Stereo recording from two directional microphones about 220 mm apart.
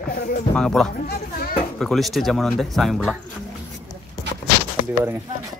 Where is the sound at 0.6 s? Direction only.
Centre (ahead or behind).